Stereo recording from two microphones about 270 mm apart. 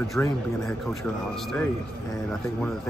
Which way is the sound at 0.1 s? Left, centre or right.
Centre.